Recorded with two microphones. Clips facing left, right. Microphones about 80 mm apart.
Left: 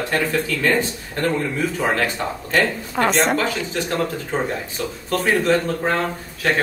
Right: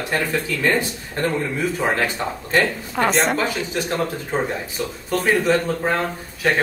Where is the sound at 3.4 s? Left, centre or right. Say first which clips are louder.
Even; centre.